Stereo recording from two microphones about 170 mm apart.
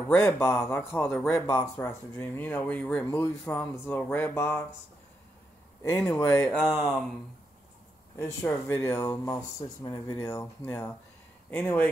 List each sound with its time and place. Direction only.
0.1 s speech: 15° left (ahead or behind)
1.5 s speech: 20° left (ahead or behind)
5.8 s speech: 20° left (ahead or behind)
6.6 s speech: centre (ahead or behind)
8.2 s speech: 15° left (ahead or behind)